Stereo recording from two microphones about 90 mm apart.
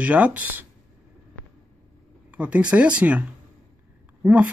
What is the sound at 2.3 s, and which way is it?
Speech, 15° right (ahead or behind).